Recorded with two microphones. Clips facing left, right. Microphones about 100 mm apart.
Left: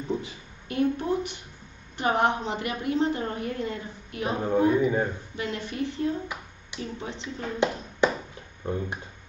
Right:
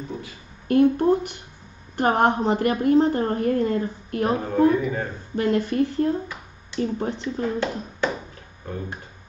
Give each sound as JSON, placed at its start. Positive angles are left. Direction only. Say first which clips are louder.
{"t": 0.7, "sound": "a woman's voice", "louder": "right 8 dB", "side_deg": -50}
{"t": 4.5, "sound": "a man's voice", "louder": "even", "side_deg": 10}
{"t": 5.3, "sound": "a woman's voice", "louder": "right 10 dB", "side_deg": -50}
{"t": 7.2, "sound": "speech", "louder": "right 3 dB", "side_deg": 20}